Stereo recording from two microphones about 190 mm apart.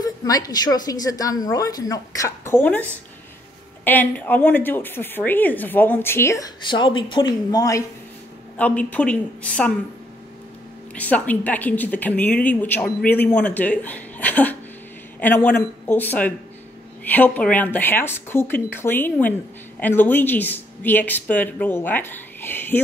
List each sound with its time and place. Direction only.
0.0 s a woman's voice: 20° left (ahead or behind)
8.5 s speech: 5° left (ahead or behind)
11.0 s speech: 10° left (ahead or behind)